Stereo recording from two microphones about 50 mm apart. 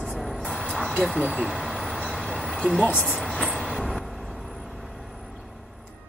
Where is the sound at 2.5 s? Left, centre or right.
Centre.